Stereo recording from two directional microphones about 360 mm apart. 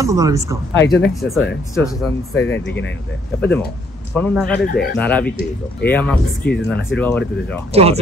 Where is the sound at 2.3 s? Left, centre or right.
Left.